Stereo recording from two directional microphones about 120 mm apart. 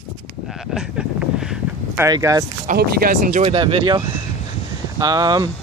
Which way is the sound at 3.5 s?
45° right (ahead or behind).